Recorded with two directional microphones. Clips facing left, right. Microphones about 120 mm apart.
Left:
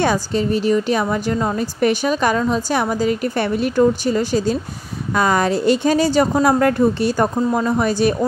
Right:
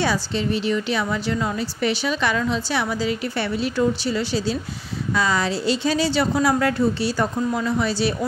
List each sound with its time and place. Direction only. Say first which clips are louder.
0.0 s a woman's voice: left 5 dB; 45° left (ahead or behind)